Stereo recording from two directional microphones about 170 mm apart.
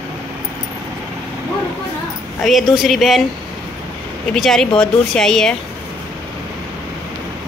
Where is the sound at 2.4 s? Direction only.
Centre (ahead or behind).